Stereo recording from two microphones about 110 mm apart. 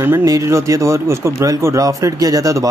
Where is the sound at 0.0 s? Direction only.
25° right (ahead or behind).